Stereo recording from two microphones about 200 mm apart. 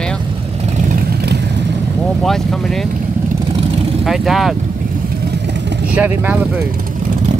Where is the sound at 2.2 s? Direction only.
Centre (ahead or behind).